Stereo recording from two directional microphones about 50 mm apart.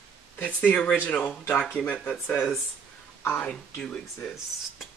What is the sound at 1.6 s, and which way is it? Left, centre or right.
Speech, centre.